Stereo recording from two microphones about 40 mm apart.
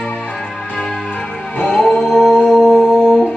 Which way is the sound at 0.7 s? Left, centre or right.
Left.